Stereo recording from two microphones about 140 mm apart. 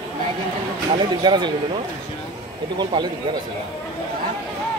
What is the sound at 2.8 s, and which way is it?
Speech, 30° right (ahead or behind).